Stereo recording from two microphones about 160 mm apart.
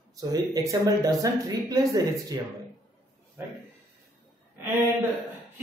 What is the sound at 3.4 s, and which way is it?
Speech, 15° right (ahead or behind).